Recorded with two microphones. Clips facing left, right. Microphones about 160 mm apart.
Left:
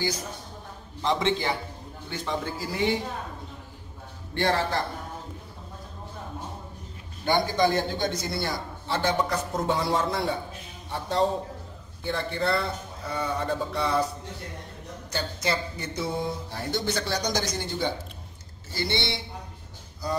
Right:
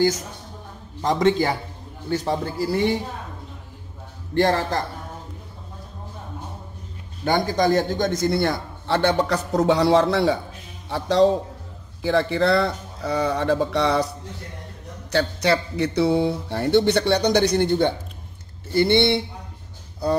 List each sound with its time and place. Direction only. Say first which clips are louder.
1.0 s a man's voice: right 6 dB; 40° right (ahead or behind)
4.3 s a man's voice: right 5 dB; 40° right (ahead or behind)
7.2 s a man's voice: right 3 dB; 45° right (ahead or behind); by 14.0 s 80° right
15.0 s a man's voice: right 9 dB; 70° right (ahead or behind)